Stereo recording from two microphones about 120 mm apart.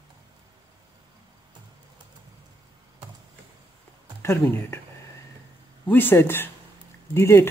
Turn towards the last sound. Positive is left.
turn(degrees=20)  # may be behind; listen again after turning